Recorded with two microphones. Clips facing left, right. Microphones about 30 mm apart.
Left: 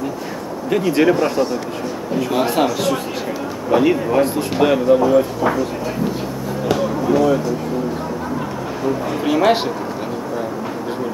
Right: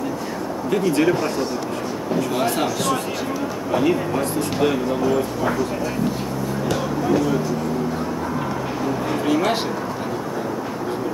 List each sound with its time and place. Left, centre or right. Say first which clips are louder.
0.7 s speech: left 3 dB; centre
6.7 s a sound: left 4 dB; centre
9.2 s speech: left 6 dB; centre